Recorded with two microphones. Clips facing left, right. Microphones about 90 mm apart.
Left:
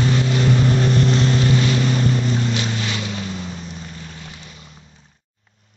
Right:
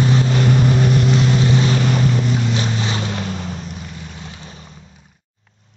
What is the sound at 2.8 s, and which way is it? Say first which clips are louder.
Boat: right 3 dB; 35° right (ahead or behind).